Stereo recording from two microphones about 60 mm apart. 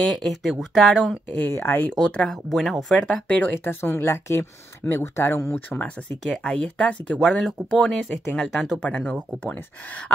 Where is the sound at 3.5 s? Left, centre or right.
Left.